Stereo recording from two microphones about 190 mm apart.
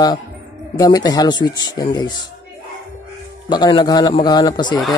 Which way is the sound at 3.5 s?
20° left (ahead or behind).